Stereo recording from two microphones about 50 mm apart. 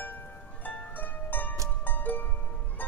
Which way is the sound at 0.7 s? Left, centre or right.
Left.